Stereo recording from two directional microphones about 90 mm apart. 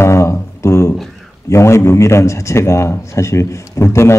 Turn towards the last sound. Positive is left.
turn(degrees=30)  # may be behind; listen again after turning